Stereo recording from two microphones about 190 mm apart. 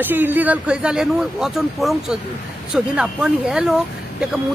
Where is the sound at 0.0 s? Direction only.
10° right (ahead or behind).